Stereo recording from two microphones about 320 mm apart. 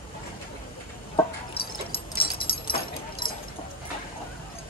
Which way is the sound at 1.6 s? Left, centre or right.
Centre.